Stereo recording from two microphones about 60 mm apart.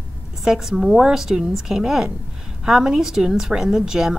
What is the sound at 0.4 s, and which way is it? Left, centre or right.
Speech, centre.